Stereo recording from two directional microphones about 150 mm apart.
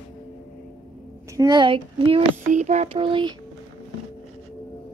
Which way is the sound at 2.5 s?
50° right (ahead or behind).